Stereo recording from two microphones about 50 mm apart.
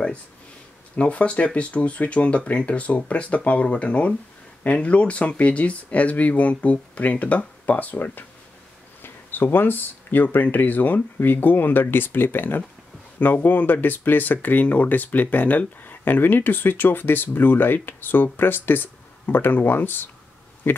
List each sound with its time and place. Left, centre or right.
0.9 s speech: left